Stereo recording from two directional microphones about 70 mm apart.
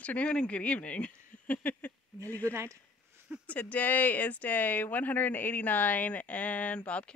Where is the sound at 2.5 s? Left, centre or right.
Right.